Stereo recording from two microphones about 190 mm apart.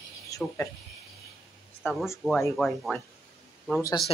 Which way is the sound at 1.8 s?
Centre (ahead or behind).